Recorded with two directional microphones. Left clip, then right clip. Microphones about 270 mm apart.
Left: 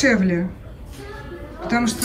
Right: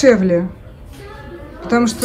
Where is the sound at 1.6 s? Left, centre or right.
Centre.